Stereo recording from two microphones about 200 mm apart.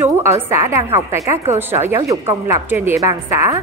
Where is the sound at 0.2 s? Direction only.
15° right (ahead or behind).